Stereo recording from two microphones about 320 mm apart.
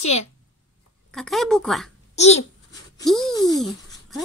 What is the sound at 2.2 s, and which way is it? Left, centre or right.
Babbling, centre.